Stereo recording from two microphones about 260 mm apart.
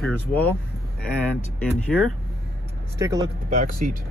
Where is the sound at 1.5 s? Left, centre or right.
Centre.